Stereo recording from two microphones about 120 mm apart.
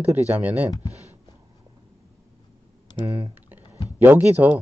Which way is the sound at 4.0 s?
15° right (ahead or behind).